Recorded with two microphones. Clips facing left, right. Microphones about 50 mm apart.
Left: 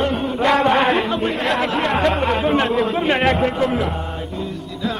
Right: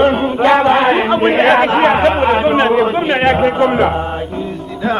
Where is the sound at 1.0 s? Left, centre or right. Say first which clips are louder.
Right 8 dB; right.